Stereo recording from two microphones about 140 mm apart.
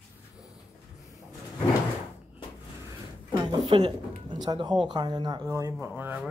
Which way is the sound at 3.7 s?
40° right (ahead or behind).